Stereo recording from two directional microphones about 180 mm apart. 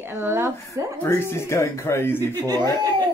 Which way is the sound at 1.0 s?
15° left (ahead or behind).